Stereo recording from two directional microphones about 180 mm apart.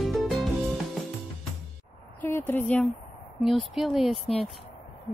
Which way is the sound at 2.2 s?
10° left (ahead or behind).